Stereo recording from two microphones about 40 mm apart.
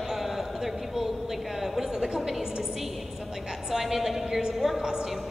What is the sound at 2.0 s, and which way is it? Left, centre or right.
Speech, centre.